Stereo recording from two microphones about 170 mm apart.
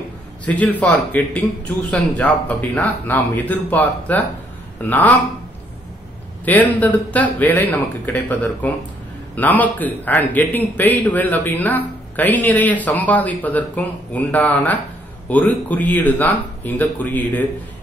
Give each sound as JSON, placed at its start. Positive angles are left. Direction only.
{"t": 0.5, "sound": "a man's voice", "side_deg": 10}
{"t": 6.4, "sound": "a man's voice", "side_deg": 10}